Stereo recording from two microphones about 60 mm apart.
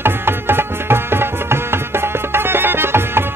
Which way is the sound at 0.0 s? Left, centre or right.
Right.